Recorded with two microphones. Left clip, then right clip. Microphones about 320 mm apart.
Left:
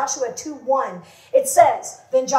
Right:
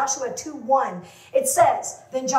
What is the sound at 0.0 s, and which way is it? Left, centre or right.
A woman's voice, left.